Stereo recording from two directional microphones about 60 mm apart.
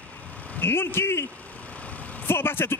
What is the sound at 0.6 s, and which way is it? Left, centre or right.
Speech, left.